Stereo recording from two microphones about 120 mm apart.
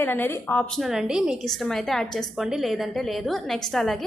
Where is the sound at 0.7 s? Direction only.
5° right (ahead or behind).